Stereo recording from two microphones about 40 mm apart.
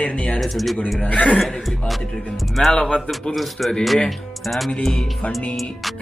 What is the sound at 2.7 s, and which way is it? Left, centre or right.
Speech, left.